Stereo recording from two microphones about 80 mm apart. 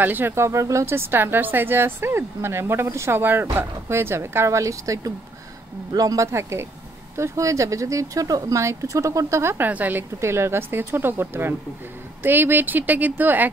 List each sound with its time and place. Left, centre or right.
0.0 s speech: right
6.2 s speech: right
9.7 s speech: right
10.1 s speech: right